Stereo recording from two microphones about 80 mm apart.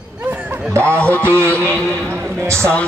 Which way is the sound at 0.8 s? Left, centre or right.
Centre.